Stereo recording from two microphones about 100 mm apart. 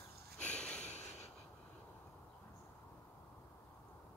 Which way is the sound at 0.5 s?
10° left (ahead or behind).